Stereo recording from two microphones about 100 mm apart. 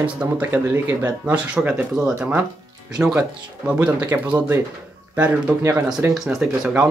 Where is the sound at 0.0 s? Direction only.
10° right (ahead or behind).